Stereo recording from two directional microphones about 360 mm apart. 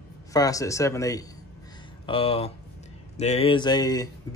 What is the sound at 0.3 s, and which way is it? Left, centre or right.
Speech, centre.